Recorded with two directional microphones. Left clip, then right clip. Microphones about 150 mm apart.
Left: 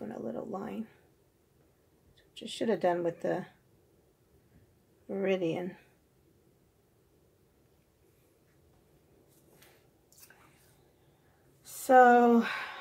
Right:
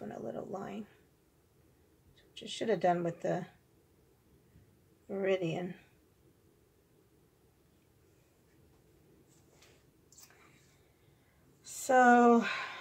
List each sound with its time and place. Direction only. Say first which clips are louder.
0.0 s a sound: left 2 dB; 45° left (ahead or behind)
2.3 s speech: left 2 dB; 45° left (ahead or behind)
5.0 s speech: left 2 dB; 45° left (ahead or behind)
11.6 s speech: left 5 dB; 40° left (ahead or behind)